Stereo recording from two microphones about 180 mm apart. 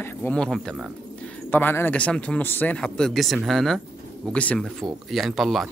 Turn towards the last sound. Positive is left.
turn(degrees=0)  # may be behind; listen again after turning